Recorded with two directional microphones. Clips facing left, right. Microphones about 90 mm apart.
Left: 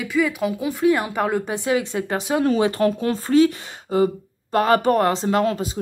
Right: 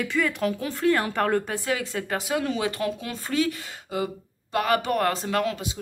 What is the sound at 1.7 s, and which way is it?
Speech, 20° left (ahead or behind).